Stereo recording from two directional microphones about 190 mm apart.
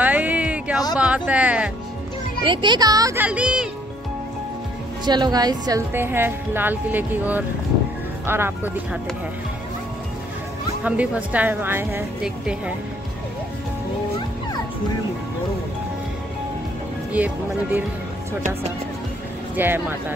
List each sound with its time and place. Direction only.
0.0 s a sound: 10° right (ahead or behind)
0.9 s speech: 5° right (ahead or behind)
2.4 s a child's voice: 25° right (ahead or behind); by 3.6 s 5° right (ahead or behind)
5.0 s speech: 20° right (ahead or behind)
10.8 s speech: 5° right (ahead or behind)
17.1 s speech: 10° right (ahead or behind)
19.5 s speech: 10° right (ahead or behind)